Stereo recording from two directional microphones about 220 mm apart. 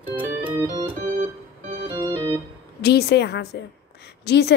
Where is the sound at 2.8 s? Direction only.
50° left (ahead or behind).